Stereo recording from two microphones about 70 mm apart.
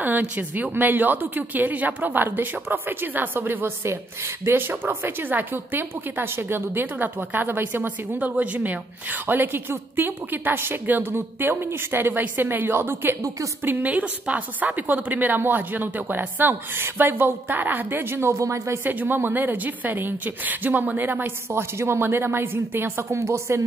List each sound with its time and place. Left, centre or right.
0.0 s a woman's voice: right
18.9 s a woman's voice: right